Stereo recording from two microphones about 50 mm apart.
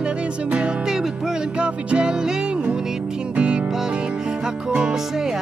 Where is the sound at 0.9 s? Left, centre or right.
Centre.